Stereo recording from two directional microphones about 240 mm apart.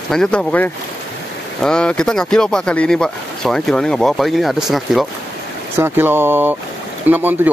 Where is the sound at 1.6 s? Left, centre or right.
Centre.